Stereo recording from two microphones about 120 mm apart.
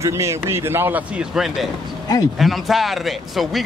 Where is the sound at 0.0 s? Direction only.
25° right (ahead or behind).